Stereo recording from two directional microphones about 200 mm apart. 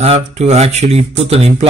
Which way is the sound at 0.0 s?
35° right (ahead or behind).